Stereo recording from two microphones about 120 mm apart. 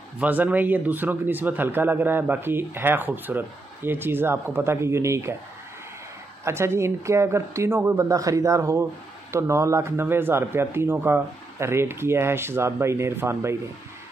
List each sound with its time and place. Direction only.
0.2 s speech: 15° right (ahead or behind)
6.4 s speech: 20° right (ahead or behind)